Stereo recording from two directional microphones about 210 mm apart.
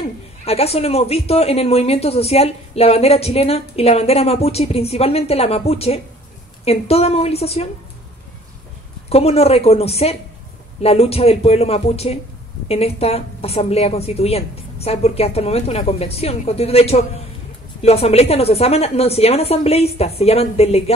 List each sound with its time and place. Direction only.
0.5 s speech: 30° left (ahead or behind)
9.1 s speech: 30° left (ahead or behind)